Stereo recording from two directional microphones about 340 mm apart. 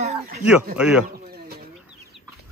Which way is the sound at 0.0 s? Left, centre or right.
Centre.